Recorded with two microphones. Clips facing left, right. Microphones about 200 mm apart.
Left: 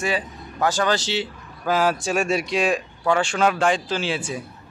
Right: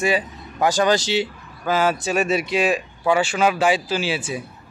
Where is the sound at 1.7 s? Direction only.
Centre (ahead or behind).